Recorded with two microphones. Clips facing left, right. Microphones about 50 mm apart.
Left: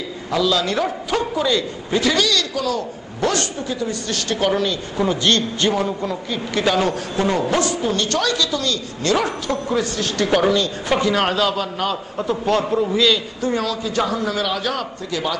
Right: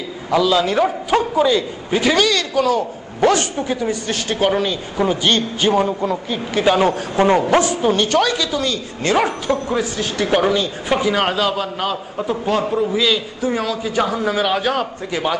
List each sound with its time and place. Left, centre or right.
0.3 s a sound: centre
1.9 s a man's voice: right
3.5 s a woman's voice: right
3.9 s speech: centre
7.2 s a man's voice: right
9.7 s speech: centre; by 15.3 s right